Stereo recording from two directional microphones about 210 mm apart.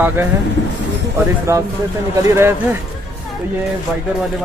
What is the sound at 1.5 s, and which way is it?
Speech, 15° right (ahead or behind).